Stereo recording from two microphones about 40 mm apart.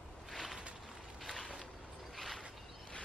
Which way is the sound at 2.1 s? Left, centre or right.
Centre.